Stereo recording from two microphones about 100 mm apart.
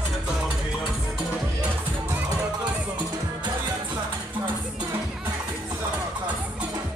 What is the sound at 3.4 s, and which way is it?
Music, 45° right (ahead or behind).